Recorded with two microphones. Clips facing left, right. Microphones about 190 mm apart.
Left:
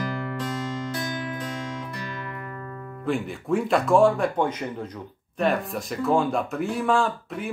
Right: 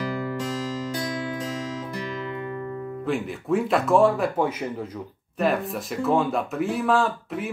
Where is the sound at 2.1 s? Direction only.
20° right (ahead or behind).